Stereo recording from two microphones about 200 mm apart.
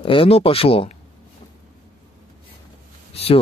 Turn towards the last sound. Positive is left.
turn(degrees=30)  # may be behind; listen again after turning